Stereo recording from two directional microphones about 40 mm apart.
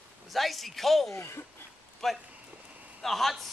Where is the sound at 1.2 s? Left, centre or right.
Left.